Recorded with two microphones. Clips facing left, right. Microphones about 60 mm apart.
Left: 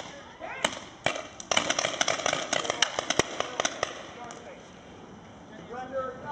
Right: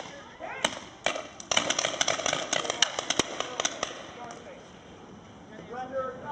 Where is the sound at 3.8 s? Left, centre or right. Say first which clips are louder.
Left 3 dB; left.